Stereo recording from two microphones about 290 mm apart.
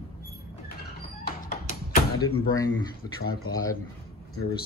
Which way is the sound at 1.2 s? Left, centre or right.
Left.